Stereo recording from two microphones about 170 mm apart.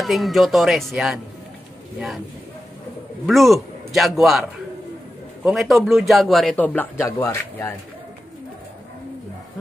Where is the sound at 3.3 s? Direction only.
Centre (ahead or behind).